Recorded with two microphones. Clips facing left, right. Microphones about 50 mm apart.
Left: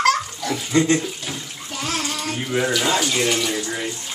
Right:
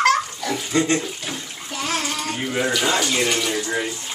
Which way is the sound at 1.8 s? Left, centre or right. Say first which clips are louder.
Right 1 dB; centre.